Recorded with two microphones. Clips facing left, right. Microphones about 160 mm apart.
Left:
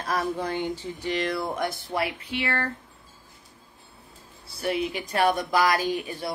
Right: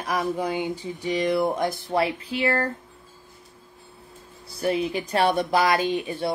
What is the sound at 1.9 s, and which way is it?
Speech, 30° right (ahead or behind).